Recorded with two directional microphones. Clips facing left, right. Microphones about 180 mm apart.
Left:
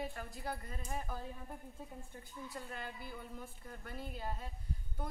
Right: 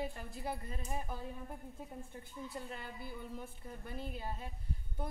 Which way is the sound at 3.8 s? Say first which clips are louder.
Right 1 dB; 25° right (ahead or behind).